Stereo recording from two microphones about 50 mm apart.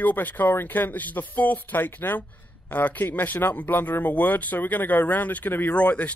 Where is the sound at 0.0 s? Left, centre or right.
Left.